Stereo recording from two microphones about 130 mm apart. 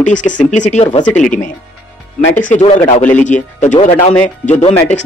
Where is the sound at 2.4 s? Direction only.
85° left.